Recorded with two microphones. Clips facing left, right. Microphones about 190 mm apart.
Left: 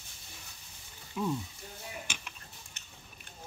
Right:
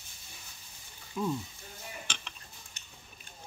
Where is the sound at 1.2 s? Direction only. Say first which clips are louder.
Right 1 dB; 5° left (ahead or behind).